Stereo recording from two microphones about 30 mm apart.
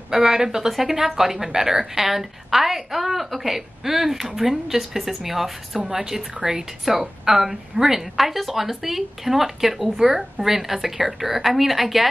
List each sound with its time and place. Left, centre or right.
0.1 s speech: centre
8.2 s speech: centre